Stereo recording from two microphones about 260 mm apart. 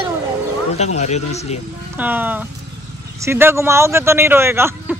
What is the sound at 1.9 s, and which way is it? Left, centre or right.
A man's voice, centre.